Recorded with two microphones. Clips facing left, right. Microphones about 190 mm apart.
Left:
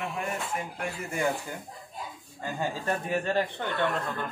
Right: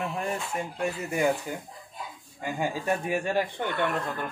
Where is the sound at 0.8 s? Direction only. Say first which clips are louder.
Right 6 dB; 20° right (ahead or behind).